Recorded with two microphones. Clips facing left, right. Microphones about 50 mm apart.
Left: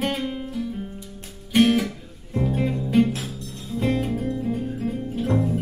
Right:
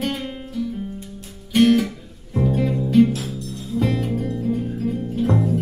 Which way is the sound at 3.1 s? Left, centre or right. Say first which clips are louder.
Right 4 dB; left.